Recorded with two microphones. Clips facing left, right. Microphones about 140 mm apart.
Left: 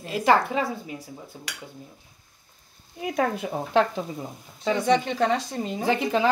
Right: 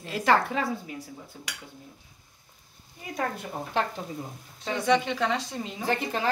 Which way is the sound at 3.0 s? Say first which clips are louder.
Left 7 dB; 85° left.